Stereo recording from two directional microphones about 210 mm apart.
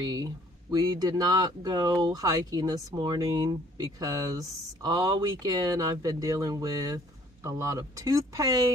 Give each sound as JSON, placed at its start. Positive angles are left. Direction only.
{"t": 0.0, "sound": "speech", "side_deg": -20}